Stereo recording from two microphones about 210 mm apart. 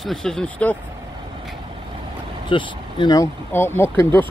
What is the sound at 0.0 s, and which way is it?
Speech, centre (ahead or behind).